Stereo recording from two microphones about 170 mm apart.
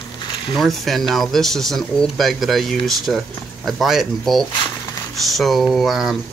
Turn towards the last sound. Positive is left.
turn(degrees=0)  # may be behind; listen again after turning